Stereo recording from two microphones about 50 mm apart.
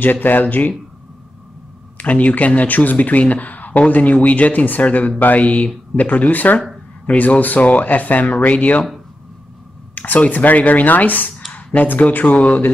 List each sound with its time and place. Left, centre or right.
0.0 s speech: left
2.0 s speech: left
5.2 s mantra: left
5.9 s speech: left
8.4 s mantra: left
9.9 s speech: left